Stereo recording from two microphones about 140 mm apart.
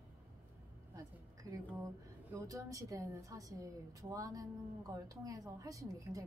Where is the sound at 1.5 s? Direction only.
25° right (ahead or behind).